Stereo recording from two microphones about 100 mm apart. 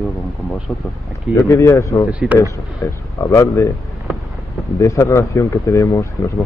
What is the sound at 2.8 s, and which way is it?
Speech, 30° left (ahead or behind).